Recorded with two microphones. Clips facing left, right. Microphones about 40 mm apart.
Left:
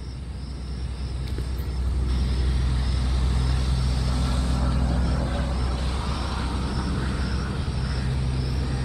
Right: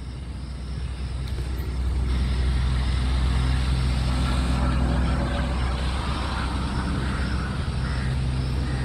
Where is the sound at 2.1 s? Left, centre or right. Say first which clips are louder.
Even; centre.